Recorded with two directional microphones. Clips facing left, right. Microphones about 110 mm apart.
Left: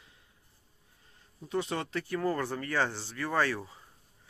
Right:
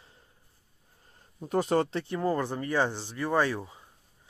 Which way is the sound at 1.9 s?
25° right (ahead or behind).